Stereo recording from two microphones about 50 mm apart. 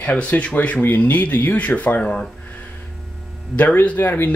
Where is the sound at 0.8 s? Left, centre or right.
Left.